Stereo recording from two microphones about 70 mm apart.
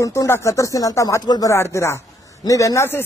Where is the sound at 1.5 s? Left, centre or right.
Left.